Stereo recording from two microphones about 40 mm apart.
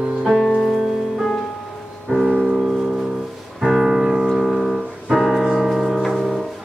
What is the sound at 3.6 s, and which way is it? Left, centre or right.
Music, centre.